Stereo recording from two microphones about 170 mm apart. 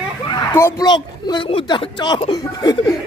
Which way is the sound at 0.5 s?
20° left (ahead or behind).